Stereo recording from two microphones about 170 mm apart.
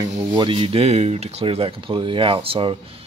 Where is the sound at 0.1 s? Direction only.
30° right (ahead or behind).